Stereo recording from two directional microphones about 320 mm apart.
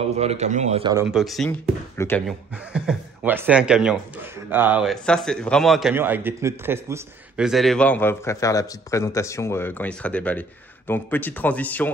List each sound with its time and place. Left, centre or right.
0.1 s a man's voice: centre
1.0 s speech: centre